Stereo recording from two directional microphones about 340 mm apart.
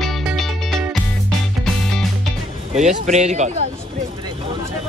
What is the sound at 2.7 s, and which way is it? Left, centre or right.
Speech, right.